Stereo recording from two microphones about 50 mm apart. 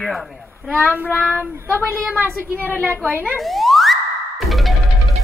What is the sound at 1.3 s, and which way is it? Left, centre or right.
Child singing, left.